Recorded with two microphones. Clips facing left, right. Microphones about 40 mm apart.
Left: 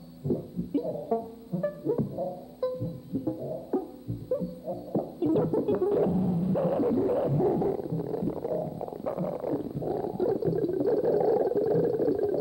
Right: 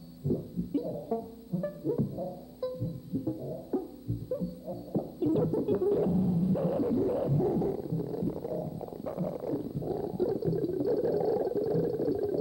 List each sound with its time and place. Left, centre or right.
0.3 s music: left
3.7 s music: left